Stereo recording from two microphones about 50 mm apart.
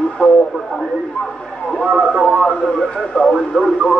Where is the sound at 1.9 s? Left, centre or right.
Centre.